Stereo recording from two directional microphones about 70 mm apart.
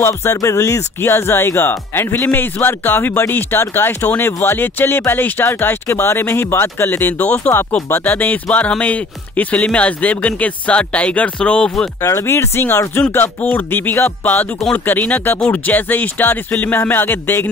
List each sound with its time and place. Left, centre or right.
0.3 s a man's voice: left; by 11.7 s centre
12.0 s a man's voice: left